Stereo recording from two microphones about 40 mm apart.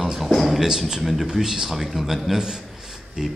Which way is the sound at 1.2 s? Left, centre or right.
Centre.